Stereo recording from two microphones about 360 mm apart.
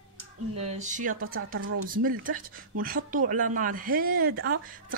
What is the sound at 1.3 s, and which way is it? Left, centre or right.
Speech, right.